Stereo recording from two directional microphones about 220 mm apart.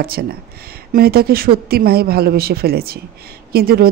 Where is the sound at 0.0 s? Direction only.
45° right (ahead or behind).